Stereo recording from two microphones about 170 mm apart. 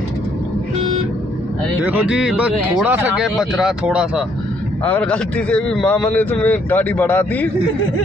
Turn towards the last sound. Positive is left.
turn(degrees=10)  # may be behind; listen again after turning